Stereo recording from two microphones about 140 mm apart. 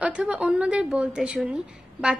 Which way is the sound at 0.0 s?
10° right (ahead or behind).